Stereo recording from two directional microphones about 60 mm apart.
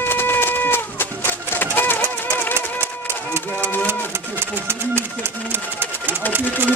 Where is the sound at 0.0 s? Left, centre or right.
Left.